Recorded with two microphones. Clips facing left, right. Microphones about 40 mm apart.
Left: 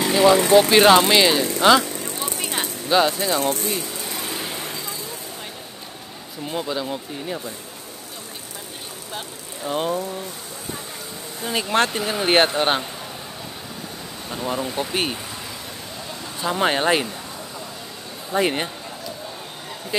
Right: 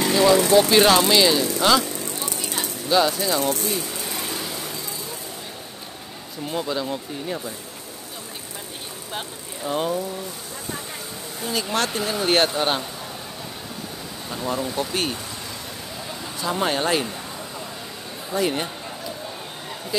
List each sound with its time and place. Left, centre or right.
0.1 s speech: centre
1.5 s vehicle: centre
2.3 s a sound: left
3.0 s speech: centre
3.8 s vehicle: centre
4.4 s vehicle: left
6.4 s speech: centre
9.6 s speech: centre
11.9 s speech: centre
14.3 s speech: centre
16.3 s speech: left
18.3 s speech: left